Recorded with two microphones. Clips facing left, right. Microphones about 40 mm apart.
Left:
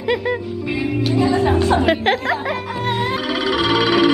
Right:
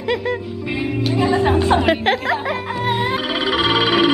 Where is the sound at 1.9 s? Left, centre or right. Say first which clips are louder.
Even; centre.